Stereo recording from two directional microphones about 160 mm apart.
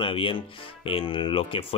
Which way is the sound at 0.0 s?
35° left (ahead or behind).